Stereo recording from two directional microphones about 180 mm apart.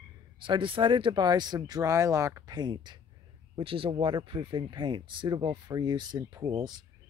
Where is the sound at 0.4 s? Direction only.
30° right (ahead or behind).